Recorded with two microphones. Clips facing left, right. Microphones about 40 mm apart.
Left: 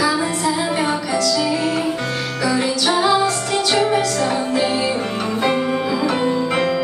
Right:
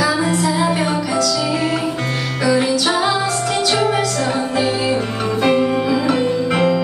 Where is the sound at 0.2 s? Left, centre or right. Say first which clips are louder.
Right 3 dB; centre.